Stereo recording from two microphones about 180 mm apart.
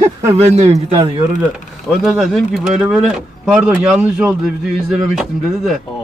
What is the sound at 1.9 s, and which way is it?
Speech, centre (ahead or behind).